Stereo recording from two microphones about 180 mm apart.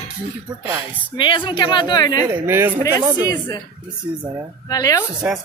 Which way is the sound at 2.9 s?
20° left (ahead or behind).